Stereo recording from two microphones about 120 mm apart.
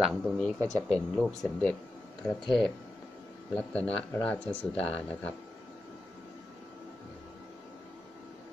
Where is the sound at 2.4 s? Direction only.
45° left (ahead or behind).